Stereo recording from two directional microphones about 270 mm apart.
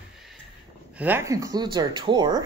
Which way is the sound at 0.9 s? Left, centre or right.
Centre.